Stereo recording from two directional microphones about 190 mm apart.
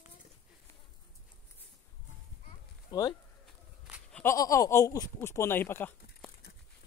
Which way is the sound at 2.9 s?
20° left (ahead or behind).